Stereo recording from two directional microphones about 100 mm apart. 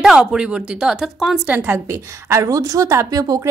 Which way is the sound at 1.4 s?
15° right (ahead or behind).